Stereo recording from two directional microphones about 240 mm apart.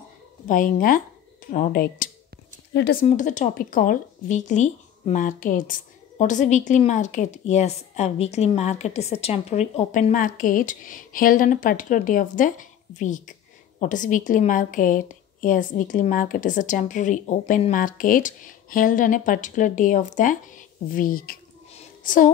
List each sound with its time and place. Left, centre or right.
0.5 s speech: left